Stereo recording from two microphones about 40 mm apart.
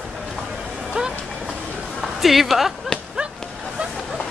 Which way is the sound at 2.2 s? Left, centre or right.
Centre.